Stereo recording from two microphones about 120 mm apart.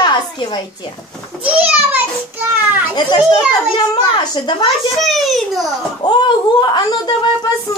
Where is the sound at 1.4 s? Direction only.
10° right (ahead or behind).